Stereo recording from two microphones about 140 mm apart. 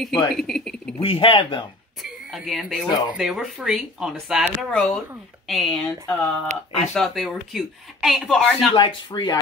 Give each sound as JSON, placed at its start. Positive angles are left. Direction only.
{"t": 0.3, "sound": "speech", "side_deg": 0}
{"t": 1.0, "sound": "speech", "side_deg": 40}
{"t": 2.0, "sound": "speech", "side_deg": 0}
{"t": 8.7, "sound": "speech", "side_deg": 35}